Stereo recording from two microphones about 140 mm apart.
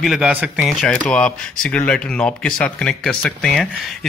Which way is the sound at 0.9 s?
5° left (ahead or behind).